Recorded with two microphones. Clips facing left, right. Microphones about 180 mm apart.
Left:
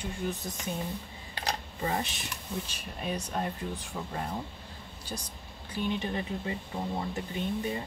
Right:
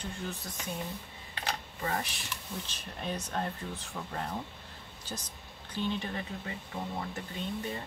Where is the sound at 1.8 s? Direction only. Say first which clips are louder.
Left 3 dB; 20° left (ahead or behind).